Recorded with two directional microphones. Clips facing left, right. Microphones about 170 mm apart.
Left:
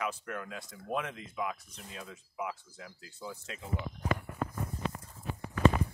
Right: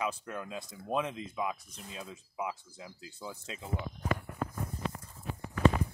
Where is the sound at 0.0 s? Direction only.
20° right (ahead or behind).